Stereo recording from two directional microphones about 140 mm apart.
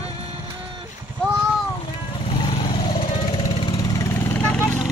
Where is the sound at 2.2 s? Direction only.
35° left (ahead or behind); by 4.9 s 5° left (ahead or behind).